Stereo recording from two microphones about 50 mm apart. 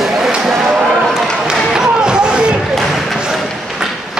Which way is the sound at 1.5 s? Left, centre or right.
Centre.